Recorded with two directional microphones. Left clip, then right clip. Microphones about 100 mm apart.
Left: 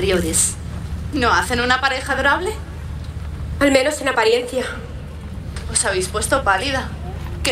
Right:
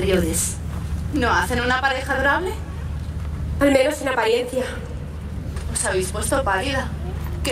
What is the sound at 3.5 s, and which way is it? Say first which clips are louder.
Speech: left 1 dB; 20° left (ahead or behind).